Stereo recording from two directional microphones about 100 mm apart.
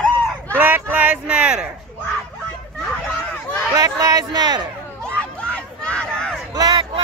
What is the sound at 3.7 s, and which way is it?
Speech, 35° right (ahead or behind).